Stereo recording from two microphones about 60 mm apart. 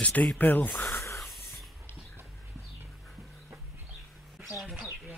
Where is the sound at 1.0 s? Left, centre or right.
Left.